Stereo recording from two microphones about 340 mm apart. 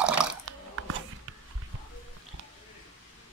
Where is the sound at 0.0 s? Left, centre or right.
Centre.